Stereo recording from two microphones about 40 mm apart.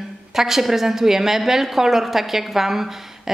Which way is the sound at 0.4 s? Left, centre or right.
Centre.